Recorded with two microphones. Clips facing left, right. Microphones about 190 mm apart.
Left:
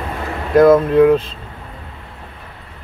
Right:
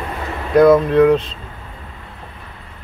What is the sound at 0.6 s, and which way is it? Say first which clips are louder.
Speech: left 1 dB; 5° left (ahead or behind).